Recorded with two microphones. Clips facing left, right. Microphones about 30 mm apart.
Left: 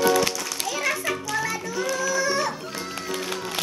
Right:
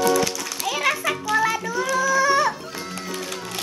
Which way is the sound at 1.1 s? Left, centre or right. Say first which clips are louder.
Right 5 dB; centre.